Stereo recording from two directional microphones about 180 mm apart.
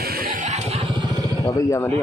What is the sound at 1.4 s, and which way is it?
Speech, 15° left (ahead or behind).